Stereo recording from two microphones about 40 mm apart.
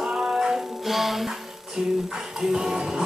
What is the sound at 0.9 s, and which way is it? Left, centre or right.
Music, centre.